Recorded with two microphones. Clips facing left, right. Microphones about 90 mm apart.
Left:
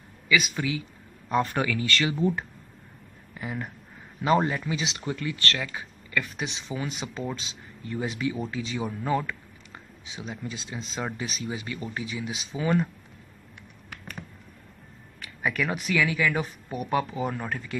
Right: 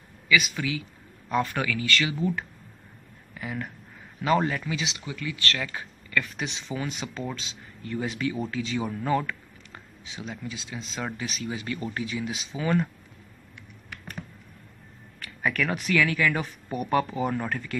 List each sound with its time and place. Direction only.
0.3 s speech: 25° left (ahead or behind)
5.0 s speech: 40° left (ahead or behind)
5.8 s speech: 15° left (ahead or behind)
8.8 s a sound: 10° left (ahead or behind)
10.0 s speech: 15° left (ahead or behind)
10.4 s speech: 30° left (ahead or behind); by 12.8 s 10° left (ahead or behind)
15.1 s speech: 10° left (ahead or behind)